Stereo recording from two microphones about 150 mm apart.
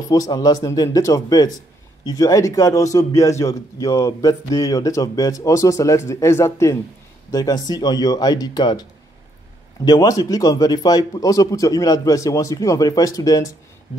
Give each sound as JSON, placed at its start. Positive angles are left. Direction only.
{"t": 0.1, "sound": "a man's voice", "side_deg": 25}
{"t": 9.8, "sound": "a man's voice", "side_deg": 25}